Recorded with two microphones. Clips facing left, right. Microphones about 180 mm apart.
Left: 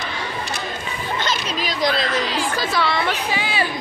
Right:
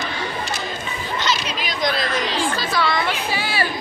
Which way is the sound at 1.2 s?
40° left (ahead or behind).